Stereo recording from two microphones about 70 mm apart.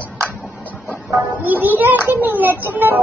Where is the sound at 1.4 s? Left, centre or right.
Right.